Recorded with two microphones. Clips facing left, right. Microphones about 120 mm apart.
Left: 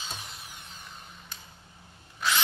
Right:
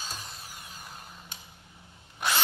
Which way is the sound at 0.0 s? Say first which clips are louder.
Even; 40° right (ahead or behind).